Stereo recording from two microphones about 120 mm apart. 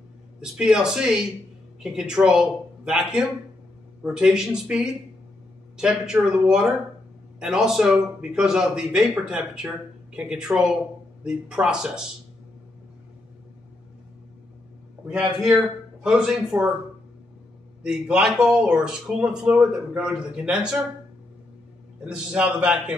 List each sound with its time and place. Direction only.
0.4 s a man's voice: 5° right (ahead or behind)
15.0 s speech: 5° right (ahead or behind)
17.8 s speech: 5° right (ahead or behind)
22.1 s speech: 10° right (ahead or behind)